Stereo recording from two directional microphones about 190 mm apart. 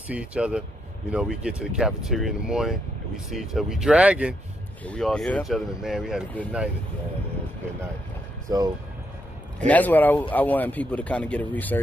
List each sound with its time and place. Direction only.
0.1 s speech: 5° right (ahead or behind)
8.5 s speech: 20° right (ahead or behind)
9.7 s speech: 10° left (ahead or behind)